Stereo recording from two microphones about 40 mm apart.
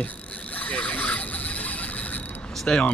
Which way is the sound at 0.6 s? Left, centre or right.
Left.